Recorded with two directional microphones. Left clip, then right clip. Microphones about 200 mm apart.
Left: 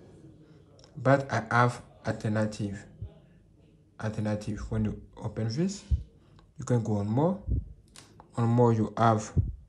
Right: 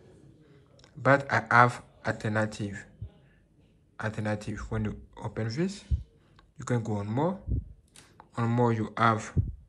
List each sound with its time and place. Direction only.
0.9 s speech: 10° left (ahead or behind)
3.9 s speech: 10° left (ahead or behind)